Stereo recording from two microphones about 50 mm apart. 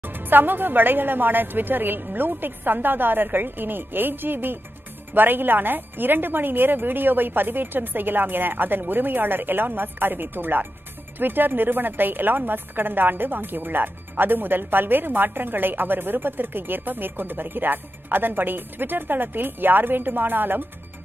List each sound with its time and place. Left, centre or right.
0.0 s a woman's voice: right